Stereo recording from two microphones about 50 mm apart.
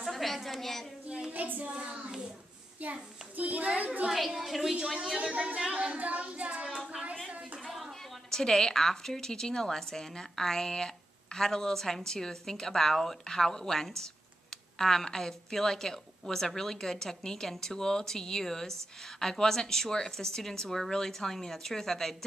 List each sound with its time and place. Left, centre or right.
0.0 s a sound: centre
1.3 s music: right
2.0 s speech: centre
2.8 s a child's voice: right
4.1 s a woman's voice: centre
5.3 s music: right
8.3 s a woman's voice: centre